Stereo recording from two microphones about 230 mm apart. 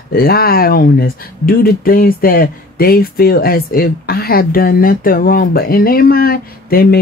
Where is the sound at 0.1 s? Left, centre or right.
Left.